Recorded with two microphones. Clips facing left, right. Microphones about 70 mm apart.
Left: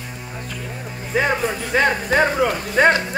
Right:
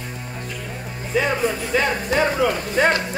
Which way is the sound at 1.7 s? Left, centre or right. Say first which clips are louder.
Left 7 dB; left.